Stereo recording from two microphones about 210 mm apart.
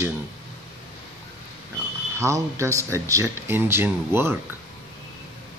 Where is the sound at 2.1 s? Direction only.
15° right (ahead or behind).